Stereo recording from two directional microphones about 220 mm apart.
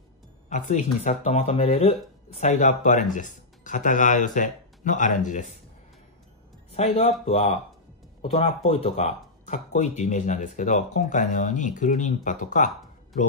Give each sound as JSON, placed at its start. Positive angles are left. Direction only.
{"t": 0.5, "sound": "speech", "side_deg": 35}
{"t": 6.7, "sound": "speech", "side_deg": 25}